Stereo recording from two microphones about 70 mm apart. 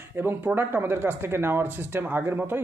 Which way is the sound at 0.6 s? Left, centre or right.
Right.